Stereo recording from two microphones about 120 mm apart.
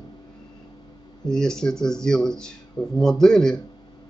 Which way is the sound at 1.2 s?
5° left (ahead or behind).